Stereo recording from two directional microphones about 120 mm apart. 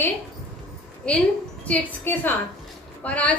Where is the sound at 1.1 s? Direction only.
10° left (ahead or behind).